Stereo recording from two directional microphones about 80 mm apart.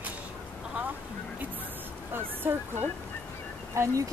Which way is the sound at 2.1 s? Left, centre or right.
Right.